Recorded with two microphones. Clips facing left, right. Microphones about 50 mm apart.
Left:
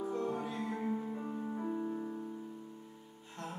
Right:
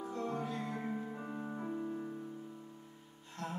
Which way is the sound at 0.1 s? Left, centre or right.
Centre.